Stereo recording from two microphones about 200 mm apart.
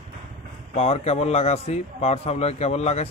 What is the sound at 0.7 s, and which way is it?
A man's voice, 35° left (ahead or behind).